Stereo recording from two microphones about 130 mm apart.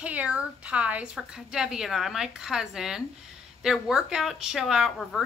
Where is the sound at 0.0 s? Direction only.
10° right (ahead or behind).